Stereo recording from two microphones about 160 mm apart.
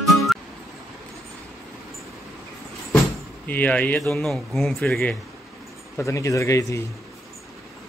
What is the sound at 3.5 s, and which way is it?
Speech, 10° left (ahead or behind).